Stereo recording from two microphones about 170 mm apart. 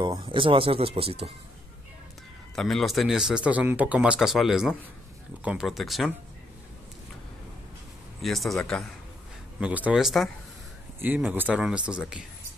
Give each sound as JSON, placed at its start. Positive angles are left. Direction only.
{"t": 0.2, "sound": "speech", "side_deg": -30}
{"t": 2.5, "sound": "speech", "side_deg": 0}
{"t": 8.2, "sound": "speech", "side_deg": 0}
{"t": 9.6, "sound": "speech", "side_deg": -10}